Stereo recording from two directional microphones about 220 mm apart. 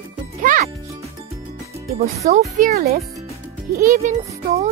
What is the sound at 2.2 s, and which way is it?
A child's voice, 35° right (ahead or behind).